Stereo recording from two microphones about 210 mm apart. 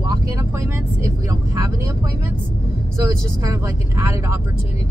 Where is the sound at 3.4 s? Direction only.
15° right (ahead or behind).